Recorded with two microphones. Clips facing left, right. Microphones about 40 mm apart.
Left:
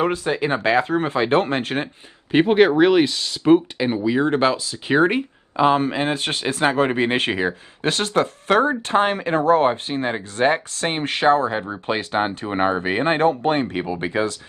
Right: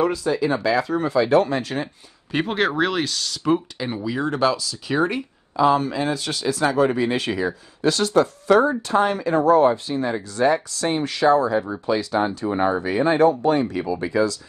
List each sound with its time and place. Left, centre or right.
0.0 s speech: left
2.3 s speech: left
3.5 s speech: left